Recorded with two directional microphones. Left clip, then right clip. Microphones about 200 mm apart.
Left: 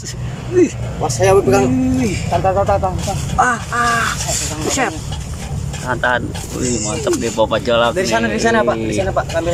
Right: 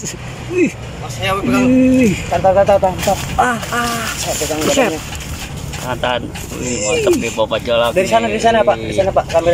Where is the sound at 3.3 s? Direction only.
10° right (ahead or behind).